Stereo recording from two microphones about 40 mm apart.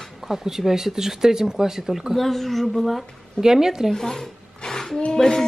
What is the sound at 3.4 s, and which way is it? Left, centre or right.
Speech, centre.